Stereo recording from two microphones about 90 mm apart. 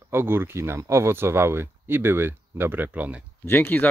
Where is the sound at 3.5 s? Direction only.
25° left (ahead or behind).